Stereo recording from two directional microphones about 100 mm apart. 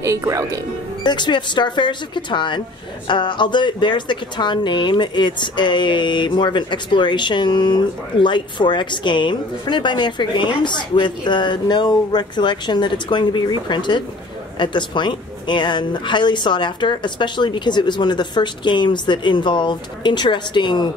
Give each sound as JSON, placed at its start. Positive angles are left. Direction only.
{"t": 0.0, "sound": "speech", "side_deg": -30}
{"t": 1.0, "sound": "speech", "side_deg": 50}